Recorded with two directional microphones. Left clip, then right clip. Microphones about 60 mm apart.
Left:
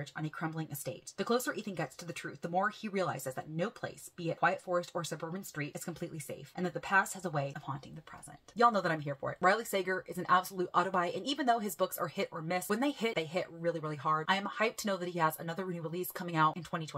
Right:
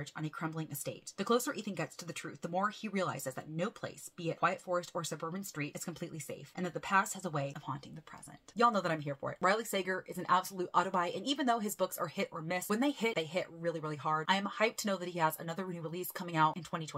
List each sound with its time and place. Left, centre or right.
0.0 s speech: right